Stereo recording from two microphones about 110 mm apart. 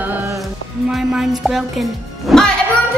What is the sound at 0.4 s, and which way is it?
Speech, centre (ahead or behind).